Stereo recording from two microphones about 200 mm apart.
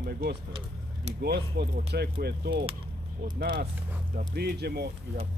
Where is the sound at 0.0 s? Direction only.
50° right (ahead or behind).